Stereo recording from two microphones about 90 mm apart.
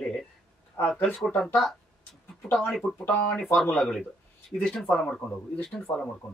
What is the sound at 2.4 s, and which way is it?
Speech, 10° left (ahead or behind).